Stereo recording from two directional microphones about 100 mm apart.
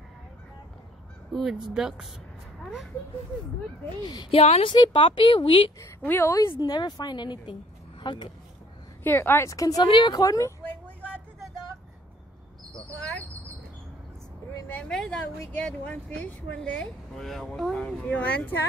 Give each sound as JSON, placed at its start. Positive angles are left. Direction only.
{"t": 1.3, "sound": "speech", "side_deg": -5}
{"t": 4.0, "sound": "speech", "side_deg": 45}
{"t": 4.3, "sound": "a woman's voice", "side_deg": 85}
{"t": 4.8, "sound": "a woman's voice", "side_deg": 55}
{"t": 5.8, "sound": "a woman's voice", "side_deg": 25}
{"t": 6.6, "sound": "speech", "side_deg": 45}
{"t": 9.0, "sound": "a woman's voice", "side_deg": 20}
{"t": 9.8, "sound": "a woman's voice", "side_deg": 50}
{"t": 14.8, "sound": "speech", "side_deg": 5}